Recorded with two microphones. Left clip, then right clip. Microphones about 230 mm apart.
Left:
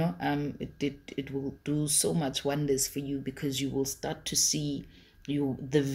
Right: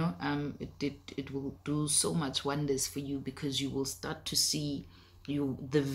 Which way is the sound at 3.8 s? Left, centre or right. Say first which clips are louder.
Left 4 dB; right.